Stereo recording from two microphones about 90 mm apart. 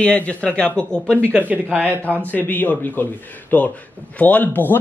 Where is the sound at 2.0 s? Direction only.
15° left (ahead or behind).